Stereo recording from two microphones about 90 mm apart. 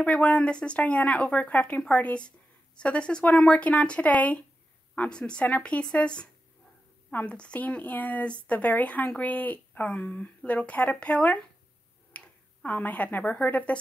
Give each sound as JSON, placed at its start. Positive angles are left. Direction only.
{"t": 0.0, "sound": "a woman's voice", "side_deg": 10}